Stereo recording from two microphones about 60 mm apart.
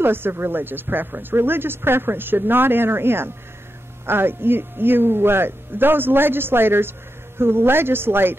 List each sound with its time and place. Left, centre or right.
0.0 s a man's voice: right